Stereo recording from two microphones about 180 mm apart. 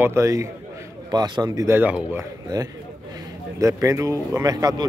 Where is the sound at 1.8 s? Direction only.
10° right (ahead or behind).